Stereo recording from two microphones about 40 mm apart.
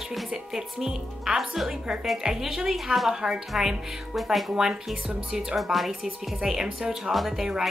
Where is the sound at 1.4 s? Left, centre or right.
Centre.